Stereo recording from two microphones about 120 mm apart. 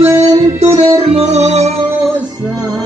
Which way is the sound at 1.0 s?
60° right (ahead or behind).